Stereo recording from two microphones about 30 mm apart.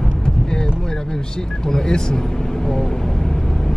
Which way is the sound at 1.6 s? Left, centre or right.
Left.